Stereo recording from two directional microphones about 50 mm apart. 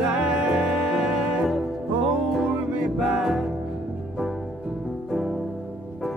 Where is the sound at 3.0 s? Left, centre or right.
Centre.